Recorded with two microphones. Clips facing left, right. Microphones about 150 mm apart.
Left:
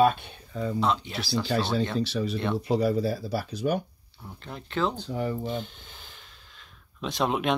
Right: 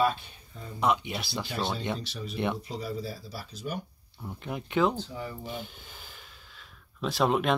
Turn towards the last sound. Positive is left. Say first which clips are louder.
# even
turn(degrees=0)  # may be behind; listen again after turning